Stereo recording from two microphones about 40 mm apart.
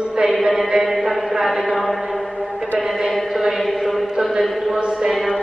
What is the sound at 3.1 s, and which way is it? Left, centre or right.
Chant, centre.